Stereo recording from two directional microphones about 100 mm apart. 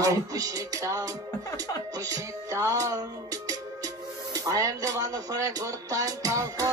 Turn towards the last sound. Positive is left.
turn(degrees=-35)  # may be behind; listen again after turning